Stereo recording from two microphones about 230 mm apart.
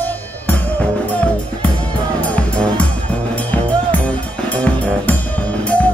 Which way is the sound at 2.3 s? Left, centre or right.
Centre.